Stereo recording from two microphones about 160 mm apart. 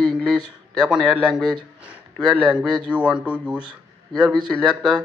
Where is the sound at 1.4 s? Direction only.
30° right (ahead or behind).